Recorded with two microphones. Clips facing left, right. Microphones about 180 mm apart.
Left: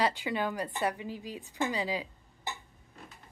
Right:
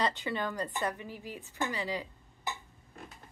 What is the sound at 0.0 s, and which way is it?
Speech, 10° left (ahead or behind).